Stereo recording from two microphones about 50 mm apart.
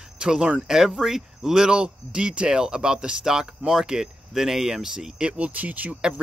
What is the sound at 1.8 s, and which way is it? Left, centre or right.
Speech, right.